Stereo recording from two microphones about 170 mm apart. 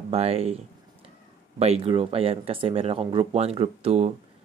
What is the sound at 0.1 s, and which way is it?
Speech, 35° right (ahead or behind).